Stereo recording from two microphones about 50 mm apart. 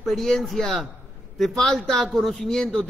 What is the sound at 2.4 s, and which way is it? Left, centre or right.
Speech, centre.